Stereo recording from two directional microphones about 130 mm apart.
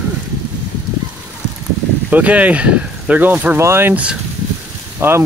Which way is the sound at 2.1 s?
10° right (ahead or behind).